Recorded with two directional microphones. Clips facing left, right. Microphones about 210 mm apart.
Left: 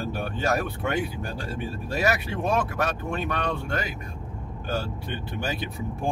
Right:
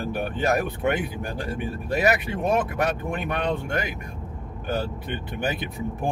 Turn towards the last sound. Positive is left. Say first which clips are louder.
# right 1 dB
turn(degrees=-15)  # may be behind; listen again after turning